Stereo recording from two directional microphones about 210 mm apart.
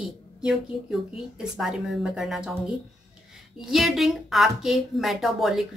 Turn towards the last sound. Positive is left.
turn(degrees=0)  # may be behind; listen again after turning